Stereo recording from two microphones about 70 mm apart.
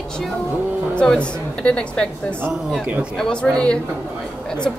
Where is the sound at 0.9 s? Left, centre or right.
Centre.